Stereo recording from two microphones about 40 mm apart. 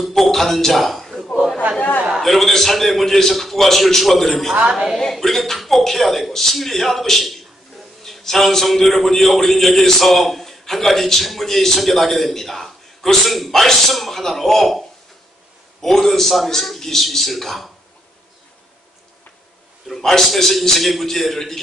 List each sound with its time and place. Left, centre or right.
0.0 s speech: centre
1.8 s a man's voice: left
2.0 s a man's voice: centre
19.9 s a man's voice: centre